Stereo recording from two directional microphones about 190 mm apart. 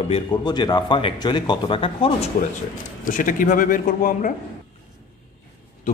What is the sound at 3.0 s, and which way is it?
Speech, 45° left (ahead or behind).